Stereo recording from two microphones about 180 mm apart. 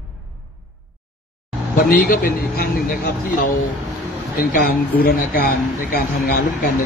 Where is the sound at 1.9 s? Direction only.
50° left (ahead or behind).